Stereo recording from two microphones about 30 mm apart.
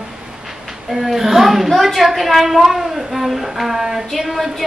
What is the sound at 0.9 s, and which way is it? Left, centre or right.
A woman's voice, centre.